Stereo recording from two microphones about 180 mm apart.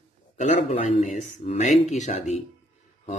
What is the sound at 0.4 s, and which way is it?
Speech, 40° left (ahead or behind).